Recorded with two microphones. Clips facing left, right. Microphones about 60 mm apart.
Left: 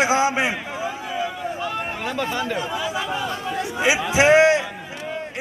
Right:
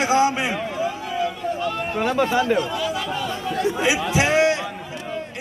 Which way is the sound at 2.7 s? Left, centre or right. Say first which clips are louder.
Even; centre.